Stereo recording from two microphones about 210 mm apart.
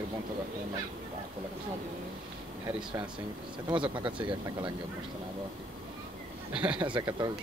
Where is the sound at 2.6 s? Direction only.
20° right (ahead or behind).